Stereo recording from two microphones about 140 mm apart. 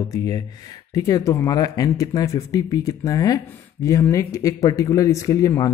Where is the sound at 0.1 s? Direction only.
25° left (ahead or behind).